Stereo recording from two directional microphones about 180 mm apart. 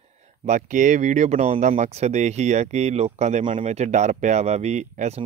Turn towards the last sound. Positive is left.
turn(degrees=-40)  # may be behind; listen again after turning